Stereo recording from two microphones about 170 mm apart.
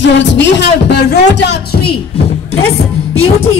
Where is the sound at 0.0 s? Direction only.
90° left; by 2.0 s 70° left (ahead or behind).